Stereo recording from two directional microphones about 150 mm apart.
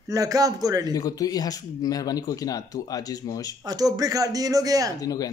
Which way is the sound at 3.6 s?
25° right (ahead or behind).